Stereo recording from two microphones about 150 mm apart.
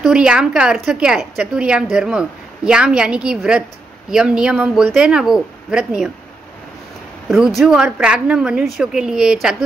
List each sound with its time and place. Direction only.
0.0 s a woman's voice: 5° right (ahead or behind)
7.2 s a woman's voice: centre (ahead or behind)